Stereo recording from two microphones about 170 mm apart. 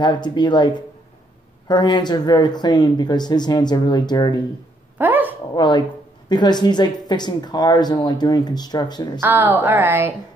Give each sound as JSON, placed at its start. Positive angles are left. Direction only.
{"t": 0.0, "sound": "speech", "side_deg": 25}
{"t": 4.9, "sound": "dog", "side_deg": -10}
{"t": 5.5, "sound": "speech", "side_deg": 25}
{"t": 9.2, "sound": "a woman's voice", "side_deg": -10}